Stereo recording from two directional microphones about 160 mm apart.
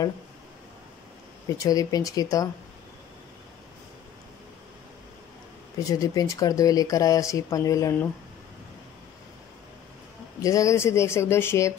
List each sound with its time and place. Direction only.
1.6 s speech: 20° left (ahead or behind)
5.9 s speech: 20° left (ahead or behind)
10.4 s speech: 20° left (ahead or behind)